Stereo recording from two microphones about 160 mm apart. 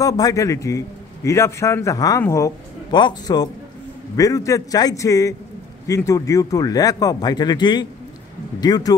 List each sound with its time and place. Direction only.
0.0 s a man's voice: 20° left (ahead or behind)